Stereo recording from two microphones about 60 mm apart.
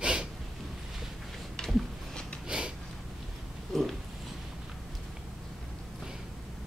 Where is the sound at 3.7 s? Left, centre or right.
Centre.